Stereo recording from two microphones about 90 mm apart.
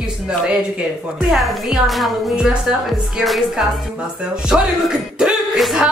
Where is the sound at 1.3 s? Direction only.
Centre (ahead or behind).